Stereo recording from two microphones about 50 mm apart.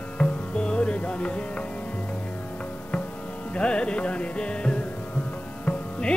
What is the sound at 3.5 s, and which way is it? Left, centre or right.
Music, centre.